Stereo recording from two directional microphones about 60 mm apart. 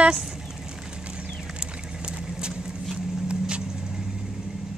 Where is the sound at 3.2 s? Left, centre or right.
Centre.